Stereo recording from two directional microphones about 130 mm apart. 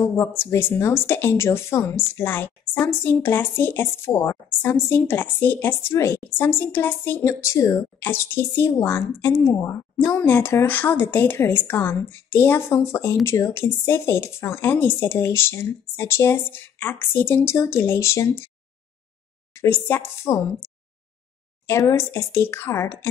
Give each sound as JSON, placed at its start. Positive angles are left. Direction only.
{"t": 0.0, "sound": "speech", "side_deg": 20}
{"t": 19.5, "sound": "speech", "side_deg": 20}
{"t": 21.6, "sound": "speech", "side_deg": 20}